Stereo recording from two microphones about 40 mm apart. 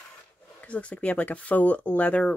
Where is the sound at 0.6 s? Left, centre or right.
Left.